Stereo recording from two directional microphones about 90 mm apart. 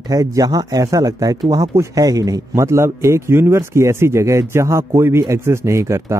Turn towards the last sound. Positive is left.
turn(degrees=-35)  # may be behind; listen again after turning